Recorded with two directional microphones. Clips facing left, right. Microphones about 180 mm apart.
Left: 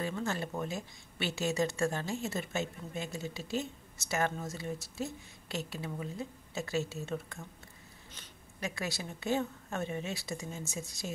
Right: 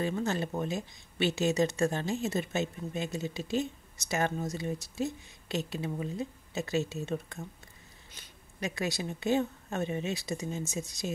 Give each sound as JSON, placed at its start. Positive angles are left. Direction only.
{"t": 0.0, "sound": "speech", "side_deg": -20}